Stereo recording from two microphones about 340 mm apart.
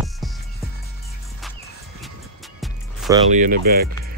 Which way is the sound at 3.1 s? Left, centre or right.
Right.